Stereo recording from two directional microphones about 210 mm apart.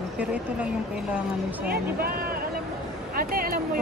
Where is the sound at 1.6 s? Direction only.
45° right (ahead or behind).